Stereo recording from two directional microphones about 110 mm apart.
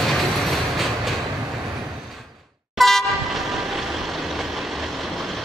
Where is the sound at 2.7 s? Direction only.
Centre (ahead or behind).